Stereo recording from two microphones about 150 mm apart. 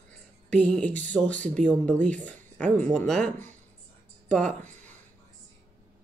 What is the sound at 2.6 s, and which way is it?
Speech, 55° right (ahead or behind).